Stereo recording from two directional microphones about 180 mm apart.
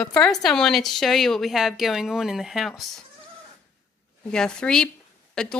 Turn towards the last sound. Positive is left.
turn(degrees=5)  # may be behind; listen again after turning